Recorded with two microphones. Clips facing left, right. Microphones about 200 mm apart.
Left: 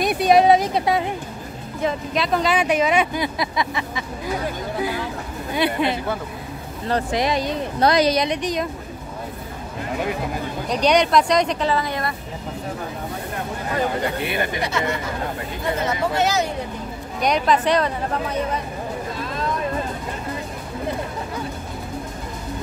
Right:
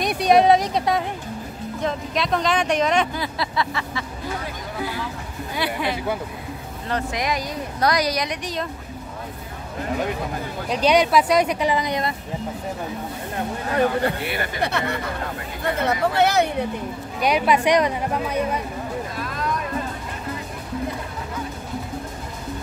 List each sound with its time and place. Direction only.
0.0 s speech: centre (ahead or behind)
3.2 s vehicle: 15° left (ahead or behind)
5.6 s speech: 20° left (ahead or behind)
6.9 s speech: 30° left (ahead or behind)
10.7 s speech: 5° right (ahead or behind)
14.2 s speech: 20° left (ahead or behind)
14.6 s speech: 60° right (ahead or behind)
17.2 s speech: 10° right (ahead or behind)